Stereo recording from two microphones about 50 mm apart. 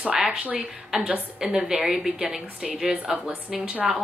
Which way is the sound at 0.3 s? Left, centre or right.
Right.